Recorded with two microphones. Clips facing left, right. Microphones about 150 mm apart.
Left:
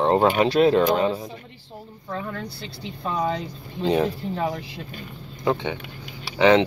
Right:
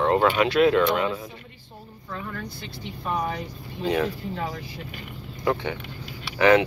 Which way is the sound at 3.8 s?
30° left (ahead or behind).